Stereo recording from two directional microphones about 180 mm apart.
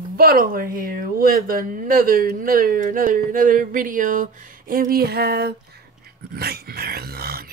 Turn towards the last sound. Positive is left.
turn(degrees=-60)  # may be behind; listen again after turning